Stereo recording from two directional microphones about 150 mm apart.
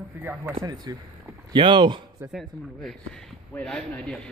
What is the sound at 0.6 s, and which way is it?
Speech, 25° right (ahead or behind).